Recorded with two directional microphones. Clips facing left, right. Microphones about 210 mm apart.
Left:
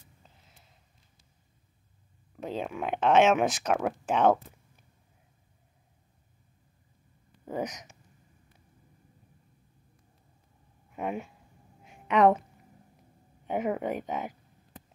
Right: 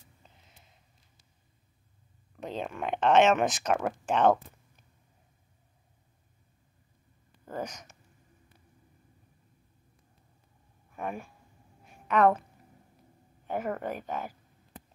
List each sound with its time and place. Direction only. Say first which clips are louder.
2.3 s speech: left 2 dB; 5° left (ahead or behind)
7.5 s speech: left 3 dB; 15° left (ahead or behind)
10.9 s a woman's voice: left 3 dB; 20° left (ahead or behind)
13.5 s speech: left 3 dB; 15° left (ahead or behind)